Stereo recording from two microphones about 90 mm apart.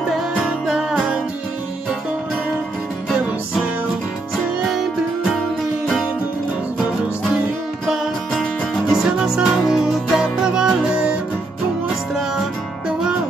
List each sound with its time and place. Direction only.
0.4 s music: 5° right (ahead or behind)
7.9 s music: 5° right (ahead or behind)